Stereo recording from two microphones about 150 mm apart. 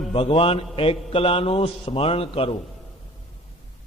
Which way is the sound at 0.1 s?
40° left (ahead or behind).